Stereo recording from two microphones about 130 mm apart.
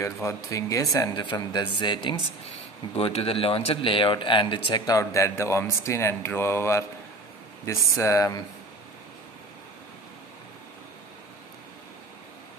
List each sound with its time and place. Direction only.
0.0 s speech: 20° left (ahead or behind)
3.0 s speech: 50° left (ahead or behind); by 8.5 s 25° left (ahead or behind)